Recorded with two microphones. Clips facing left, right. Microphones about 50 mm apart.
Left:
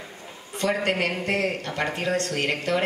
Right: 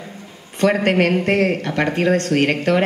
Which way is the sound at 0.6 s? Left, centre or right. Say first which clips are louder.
Right 8 dB; right.